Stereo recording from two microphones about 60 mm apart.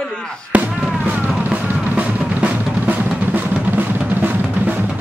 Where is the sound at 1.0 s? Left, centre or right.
Right.